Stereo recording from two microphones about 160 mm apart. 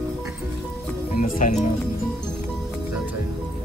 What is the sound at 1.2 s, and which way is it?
Music, 55° left (ahead or behind).